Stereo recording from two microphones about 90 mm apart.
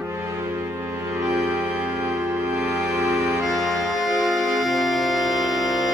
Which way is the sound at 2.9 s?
35° right (ahead or behind).